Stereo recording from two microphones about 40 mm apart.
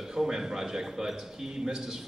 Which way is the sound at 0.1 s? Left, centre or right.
Centre.